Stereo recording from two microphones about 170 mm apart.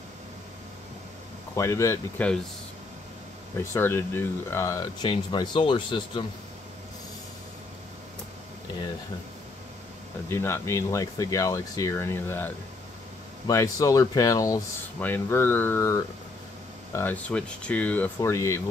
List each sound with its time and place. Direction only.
1.5 s speech: 15° left (ahead or behind)
3.5 s speech: 15° left (ahead or behind)
10.2 s speech: 15° left (ahead or behind)